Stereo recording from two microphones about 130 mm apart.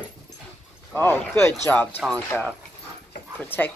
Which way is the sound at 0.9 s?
15° left (ahead or behind).